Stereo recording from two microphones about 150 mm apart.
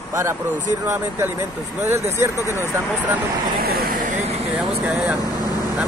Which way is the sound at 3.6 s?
90° right.